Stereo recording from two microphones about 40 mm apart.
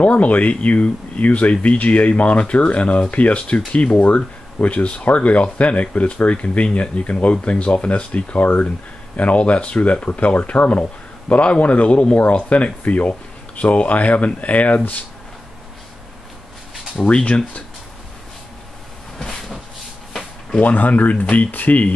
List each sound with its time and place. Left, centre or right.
0.0 s speech: left
17.1 s speech: left
19.1 s train: centre
20.6 s speech: left